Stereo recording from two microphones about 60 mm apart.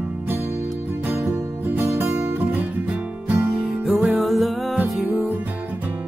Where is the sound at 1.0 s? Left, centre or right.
Right.